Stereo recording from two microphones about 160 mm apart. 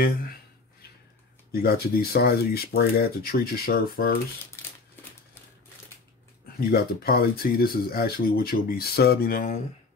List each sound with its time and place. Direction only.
1.5 s speech: 75° left (ahead or behind)
6.7 s speech: 70° left (ahead or behind)